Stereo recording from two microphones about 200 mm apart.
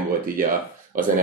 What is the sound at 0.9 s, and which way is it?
Speech, 45° right (ahead or behind).